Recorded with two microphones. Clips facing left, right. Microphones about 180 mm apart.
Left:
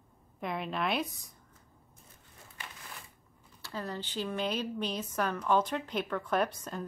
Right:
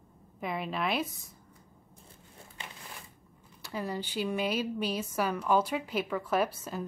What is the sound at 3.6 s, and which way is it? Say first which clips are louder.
Speech: right 3 dB; 15° right (ahead or behind).